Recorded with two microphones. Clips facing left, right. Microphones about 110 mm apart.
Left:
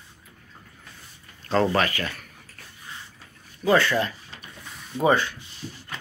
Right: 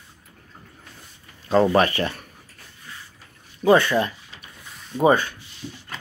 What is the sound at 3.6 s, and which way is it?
Speech, 20° right (ahead or behind).